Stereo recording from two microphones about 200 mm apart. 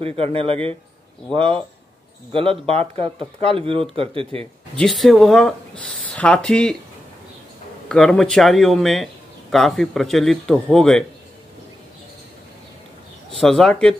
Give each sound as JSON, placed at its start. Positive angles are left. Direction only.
{"t": 0.0, "sound": "speech", "side_deg": -30}
{"t": 2.6, "sound": "speech", "side_deg": -30}
{"t": 4.7, "sound": "speech", "side_deg": 0}
{"t": 7.9, "sound": "speech", "side_deg": 0}
{"t": 13.3, "sound": "speech", "side_deg": 0}